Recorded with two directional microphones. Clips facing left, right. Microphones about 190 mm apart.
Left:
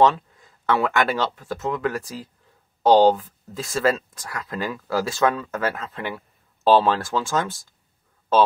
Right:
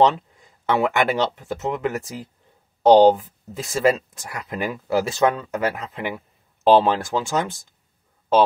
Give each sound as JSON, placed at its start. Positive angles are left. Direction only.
{"t": 0.0, "sound": "speech", "side_deg": -20}